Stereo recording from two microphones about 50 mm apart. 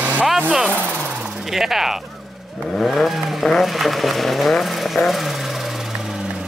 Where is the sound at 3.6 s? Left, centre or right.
Centre.